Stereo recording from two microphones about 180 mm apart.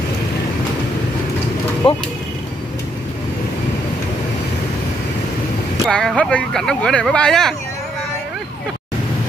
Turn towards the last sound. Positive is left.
turn(degrees=5)  # may be behind; listen again after turning